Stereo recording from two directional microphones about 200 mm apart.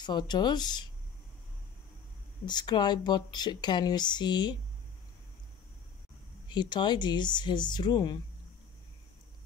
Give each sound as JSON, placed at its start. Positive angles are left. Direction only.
{"t": 0.0, "sound": "speech", "side_deg": 20}
{"t": 2.4, "sound": "speech", "side_deg": 20}
{"t": 6.5, "sound": "speech", "side_deg": 20}